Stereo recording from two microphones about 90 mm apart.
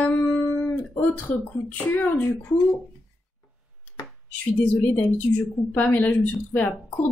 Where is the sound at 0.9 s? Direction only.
20° left (ahead or behind).